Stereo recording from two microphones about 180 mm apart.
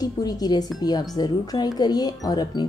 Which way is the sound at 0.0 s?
20° left (ahead or behind).